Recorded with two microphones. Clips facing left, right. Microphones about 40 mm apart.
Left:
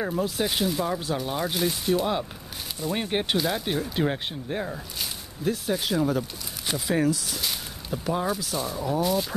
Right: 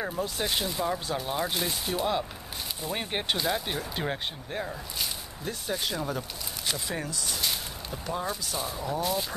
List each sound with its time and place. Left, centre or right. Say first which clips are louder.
0.0 s speech: left 4 dB; centre